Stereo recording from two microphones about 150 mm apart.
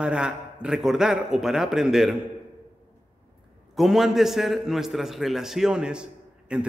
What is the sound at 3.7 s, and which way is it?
A man's voice, centre (ahead or behind).